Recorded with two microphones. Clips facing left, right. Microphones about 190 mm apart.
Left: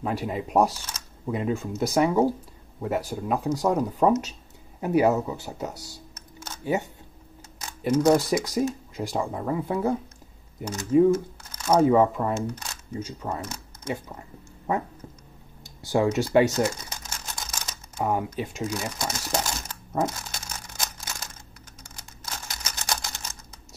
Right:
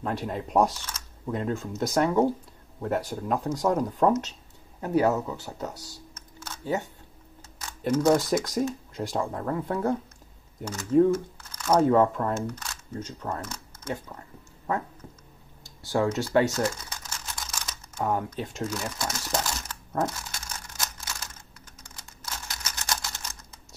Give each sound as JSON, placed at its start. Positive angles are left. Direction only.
{"t": 0.0, "sound": "speech", "side_deg": 5}
{"t": 6.4, "sound": "a sound", "side_deg": 15}
{"t": 7.9, "sound": "speech", "side_deg": 15}
{"t": 10.6, "sound": "speech", "side_deg": 20}
{"t": 11.1, "sound": "a sound", "side_deg": 20}
{"t": 11.8, "sound": "speech", "side_deg": 5}
{"t": 15.8, "sound": "speech", "side_deg": 15}
{"t": 20.2, "sound": "a sound", "side_deg": 15}
{"t": 22.2, "sound": "camera", "side_deg": 20}